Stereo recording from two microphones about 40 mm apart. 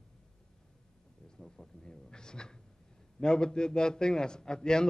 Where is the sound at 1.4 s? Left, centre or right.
Centre.